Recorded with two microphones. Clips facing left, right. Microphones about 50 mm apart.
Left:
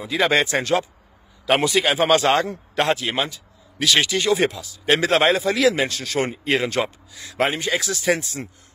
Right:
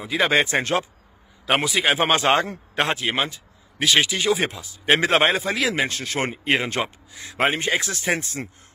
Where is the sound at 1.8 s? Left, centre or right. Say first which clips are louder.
Left 2 dB; right.